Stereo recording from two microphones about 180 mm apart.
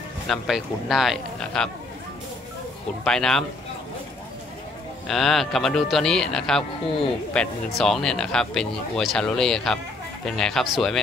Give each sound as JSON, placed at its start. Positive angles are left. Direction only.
{"t": 0.3, "sound": "speech", "side_deg": 0}
{"t": 3.0, "sound": "speech", "side_deg": 5}
{"t": 5.0, "sound": "speech", "side_deg": 0}